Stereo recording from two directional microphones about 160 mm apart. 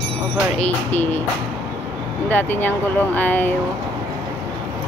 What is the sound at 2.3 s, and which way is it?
Speech, 10° left (ahead or behind).